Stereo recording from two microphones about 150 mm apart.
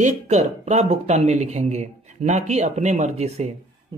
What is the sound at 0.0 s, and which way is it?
Speech, 50° right (ahead or behind).